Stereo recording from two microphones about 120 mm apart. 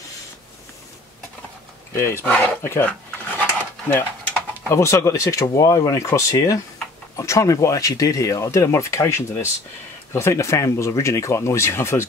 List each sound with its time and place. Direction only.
2.0 s speech: 20° left (ahead or behind)
3.9 s speech: 20° left (ahead or behind)